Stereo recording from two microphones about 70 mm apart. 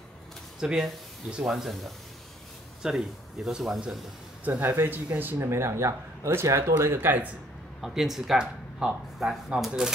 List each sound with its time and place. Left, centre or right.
0.6 s speech: centre
4.5 s speech: right
5.4 s speech: right
7.0 s speech: right
7.8 s speech: centre